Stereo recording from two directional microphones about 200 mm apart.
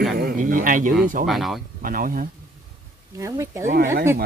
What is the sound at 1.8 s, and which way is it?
Speech, 45° right (ahead or behind).